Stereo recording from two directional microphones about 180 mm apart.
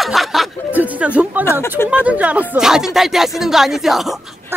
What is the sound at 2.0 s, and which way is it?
Speech, 5° right (ahead or behind).